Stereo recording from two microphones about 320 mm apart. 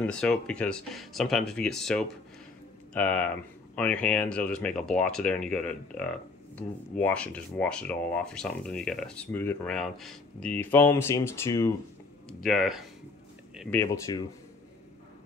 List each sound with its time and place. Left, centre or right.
0.0 s speech: centre